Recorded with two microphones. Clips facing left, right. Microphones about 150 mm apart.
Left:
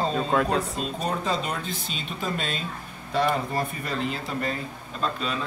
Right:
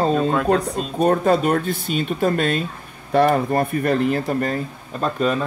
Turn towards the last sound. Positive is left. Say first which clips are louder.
# right 8 dB
turn(degrees=-50)  # may be behind; listen again after turning